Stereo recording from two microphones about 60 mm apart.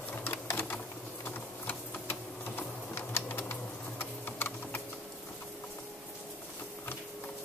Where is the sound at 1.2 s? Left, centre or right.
Left.